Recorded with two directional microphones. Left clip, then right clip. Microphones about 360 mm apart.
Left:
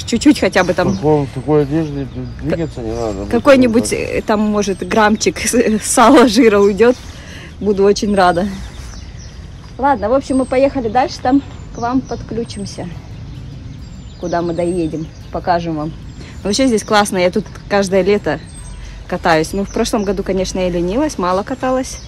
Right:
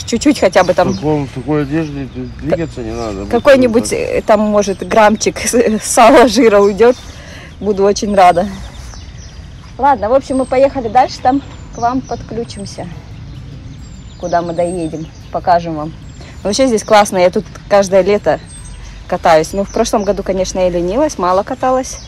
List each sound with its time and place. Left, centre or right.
0.0 s speech: centre
1.0 s speech: left
3.3 s speech: centre
9.8 s speech: centre
14.2 s speech: centre